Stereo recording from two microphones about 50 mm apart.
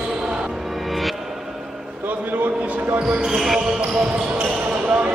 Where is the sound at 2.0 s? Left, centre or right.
Right.